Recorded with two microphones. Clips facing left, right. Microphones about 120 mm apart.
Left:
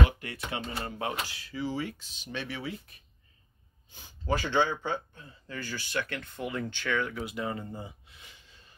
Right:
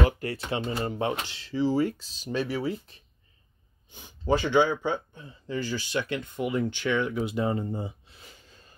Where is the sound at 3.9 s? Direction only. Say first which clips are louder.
Right 5 dB; 20° right (ahead or behind); by 8.6 s 40° right (ahead or behind).